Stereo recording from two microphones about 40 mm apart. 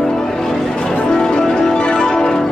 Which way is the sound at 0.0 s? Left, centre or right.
Centre.